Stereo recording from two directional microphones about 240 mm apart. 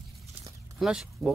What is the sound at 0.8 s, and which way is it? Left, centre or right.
Speech, centre.